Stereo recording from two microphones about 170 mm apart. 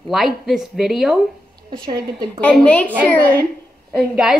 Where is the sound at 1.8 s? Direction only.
25° right (ahead or behind).